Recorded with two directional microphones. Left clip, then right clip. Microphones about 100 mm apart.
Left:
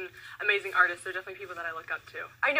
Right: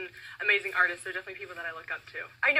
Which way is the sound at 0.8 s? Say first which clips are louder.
Left 2 dB; 30° right (ahead or behind).